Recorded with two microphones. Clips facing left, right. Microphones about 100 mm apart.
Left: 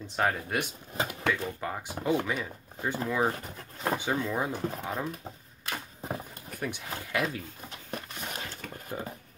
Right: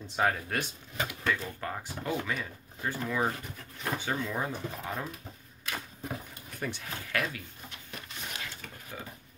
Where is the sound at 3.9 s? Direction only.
15° left (ahead or behind).